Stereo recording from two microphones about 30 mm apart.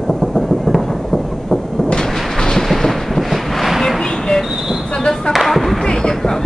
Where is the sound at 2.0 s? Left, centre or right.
Left.